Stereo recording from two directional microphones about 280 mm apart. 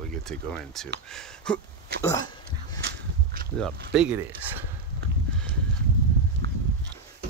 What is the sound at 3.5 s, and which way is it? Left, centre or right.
Speech, centre.